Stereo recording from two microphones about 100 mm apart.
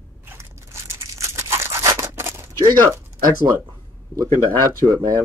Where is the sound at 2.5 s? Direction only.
35° right (ahead or behind).